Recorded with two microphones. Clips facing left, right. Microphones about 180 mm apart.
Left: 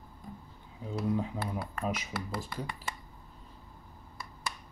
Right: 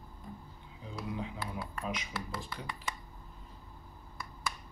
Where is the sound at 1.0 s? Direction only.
45° left (ahead or behind).